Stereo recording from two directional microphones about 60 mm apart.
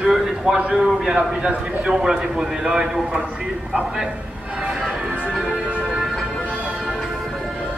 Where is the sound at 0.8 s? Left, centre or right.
Centre.